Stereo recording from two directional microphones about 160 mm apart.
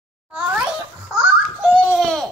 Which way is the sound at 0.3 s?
10° right (ahead or behind).